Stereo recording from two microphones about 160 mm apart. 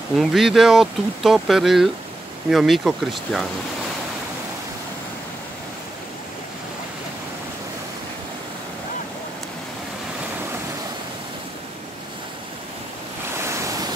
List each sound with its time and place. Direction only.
0.1 s speech: centre (ahead or behind)
13.4 s waves: 20° right (ahead or behind)